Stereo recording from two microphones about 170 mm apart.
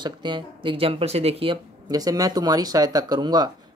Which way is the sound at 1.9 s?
20° right (ahead or behind).